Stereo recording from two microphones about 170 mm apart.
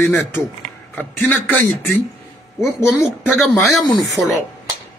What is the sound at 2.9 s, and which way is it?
Speech, 5° right (ahead or behind).